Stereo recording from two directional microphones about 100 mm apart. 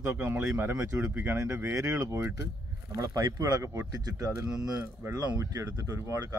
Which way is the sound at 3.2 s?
45° right (ahead or behind).